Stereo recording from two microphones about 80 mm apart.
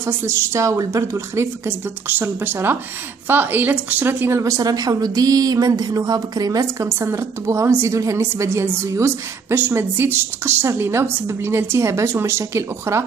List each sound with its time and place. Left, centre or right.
0.0 s a woman's voice: right
4.4 s a woman's voice: right